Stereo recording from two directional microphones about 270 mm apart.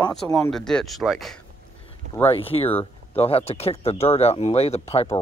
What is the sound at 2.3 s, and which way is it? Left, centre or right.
Speech, left.